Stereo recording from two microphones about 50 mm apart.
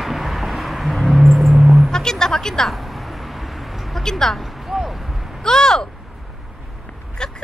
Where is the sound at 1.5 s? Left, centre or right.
Centre.